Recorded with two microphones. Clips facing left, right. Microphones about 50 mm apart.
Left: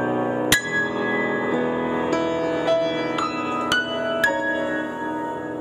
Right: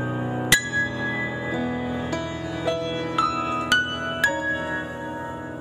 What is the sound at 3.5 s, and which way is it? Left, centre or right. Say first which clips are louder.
Music: even; centre.